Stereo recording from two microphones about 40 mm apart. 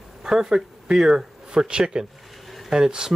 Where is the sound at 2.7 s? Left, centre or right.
Centre.